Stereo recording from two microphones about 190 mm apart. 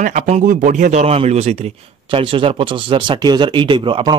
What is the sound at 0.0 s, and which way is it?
Speech, 40° right (ahead or behind).